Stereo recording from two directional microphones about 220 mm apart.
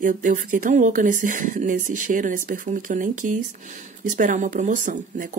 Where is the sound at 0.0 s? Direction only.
35° right (ahead or behind).